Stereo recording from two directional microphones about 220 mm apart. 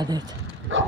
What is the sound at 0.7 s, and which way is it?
Dog, 60° right (ahead or behind).